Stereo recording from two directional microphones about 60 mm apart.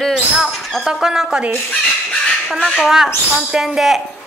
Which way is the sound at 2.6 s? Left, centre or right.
Centre.